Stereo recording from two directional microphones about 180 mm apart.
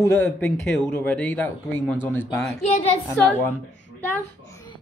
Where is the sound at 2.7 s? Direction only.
35° left (ahead or behind).